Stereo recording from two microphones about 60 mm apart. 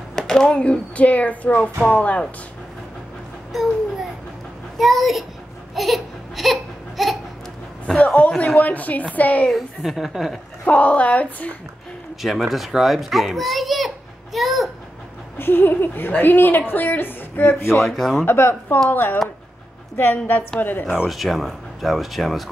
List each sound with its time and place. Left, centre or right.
0.1 s a woman's voice: centre
4.7 s a child's voice: centre
5.8 s a sound: centre
7.8 s a woman's voice: centre
9.5 s a child's voice: centre
10.6 s a woman's voice: left
12.2 s a child's voice: centre
15.3 s speech: left
17.8 s a child's voice: centre
18.2 s speech: left
21.1 s a child's voice: centre